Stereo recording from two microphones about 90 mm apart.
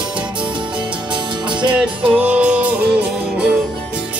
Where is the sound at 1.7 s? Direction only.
15° right (ahead or behind).